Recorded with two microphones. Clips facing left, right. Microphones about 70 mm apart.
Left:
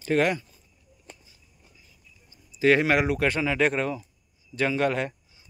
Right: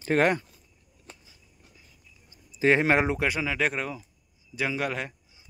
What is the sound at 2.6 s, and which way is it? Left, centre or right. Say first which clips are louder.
Speech: left 1 dB; right.